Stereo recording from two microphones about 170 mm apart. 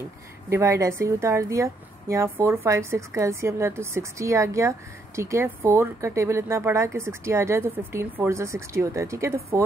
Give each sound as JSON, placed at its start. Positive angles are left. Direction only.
{"t": 0.5, "sound": "a woman's voice", "side_deg": -15}